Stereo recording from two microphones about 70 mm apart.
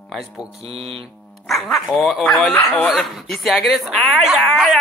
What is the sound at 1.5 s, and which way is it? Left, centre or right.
A man's voice, centre.